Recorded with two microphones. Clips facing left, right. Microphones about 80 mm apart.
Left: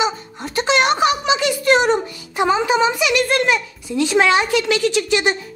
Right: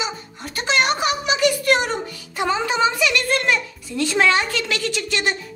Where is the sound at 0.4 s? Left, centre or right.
Left.